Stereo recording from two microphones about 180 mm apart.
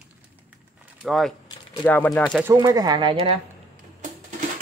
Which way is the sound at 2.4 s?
20° right (ahead or behind).